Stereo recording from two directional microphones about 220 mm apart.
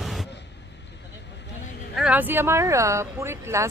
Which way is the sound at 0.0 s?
Centre (ahead or behind).